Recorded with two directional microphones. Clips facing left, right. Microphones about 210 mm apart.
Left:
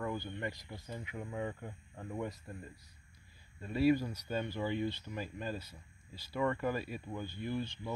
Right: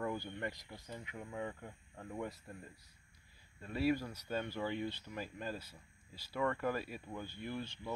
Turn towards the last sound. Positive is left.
turn(degrees=-5)  # may be behind; listen again after turning